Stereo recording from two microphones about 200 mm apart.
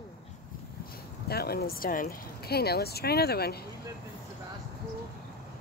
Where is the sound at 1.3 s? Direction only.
50° left (ahead or behind).